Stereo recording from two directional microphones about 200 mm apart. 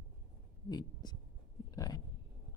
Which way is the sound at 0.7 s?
20° left (ahead or behind).